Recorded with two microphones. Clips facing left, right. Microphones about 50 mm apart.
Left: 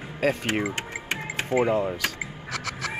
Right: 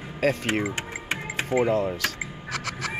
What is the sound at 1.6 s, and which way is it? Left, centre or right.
Speech, centre.